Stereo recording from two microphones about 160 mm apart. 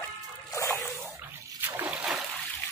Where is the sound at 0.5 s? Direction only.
20° left (ahead or behind).